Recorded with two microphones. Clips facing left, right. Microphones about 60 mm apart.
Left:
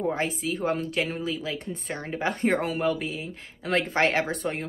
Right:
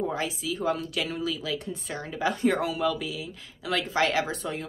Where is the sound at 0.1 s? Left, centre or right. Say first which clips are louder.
Left 2 dB; left.